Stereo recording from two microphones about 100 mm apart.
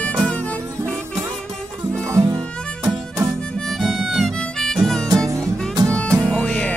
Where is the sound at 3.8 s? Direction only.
5° right (ahead or behind).